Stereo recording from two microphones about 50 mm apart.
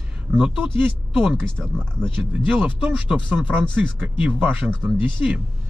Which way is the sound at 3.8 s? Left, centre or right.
Right.